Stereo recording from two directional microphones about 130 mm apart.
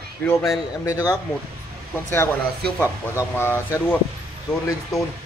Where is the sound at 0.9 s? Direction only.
30° left (ahead or behind).